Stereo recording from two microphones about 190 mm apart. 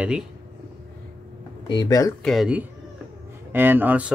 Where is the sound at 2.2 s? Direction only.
5° right (ahead or behind).